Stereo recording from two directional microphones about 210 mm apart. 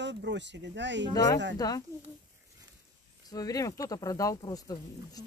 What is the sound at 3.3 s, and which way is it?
Speech, 15° left (ahead or behind).